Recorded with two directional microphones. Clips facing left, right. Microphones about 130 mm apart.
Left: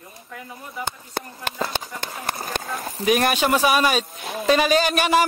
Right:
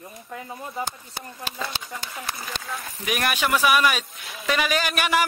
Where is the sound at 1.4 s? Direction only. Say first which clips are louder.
Left 4 dB; 50° left (ahead or behind).